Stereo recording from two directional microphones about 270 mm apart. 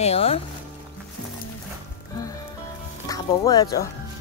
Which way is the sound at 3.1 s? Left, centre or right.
Centre.